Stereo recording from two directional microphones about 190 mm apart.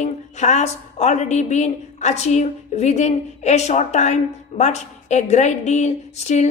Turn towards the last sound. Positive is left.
turn(degrees=35)  # may be behind; listen again after turning